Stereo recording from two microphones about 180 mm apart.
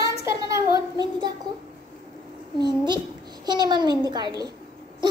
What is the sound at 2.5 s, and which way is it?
A woman's voice, 25° right (ahead or behind).